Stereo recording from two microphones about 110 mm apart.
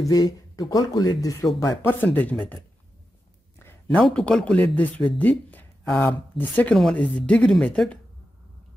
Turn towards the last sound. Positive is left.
turn(degrees=10)  # may be behind; listen again after turning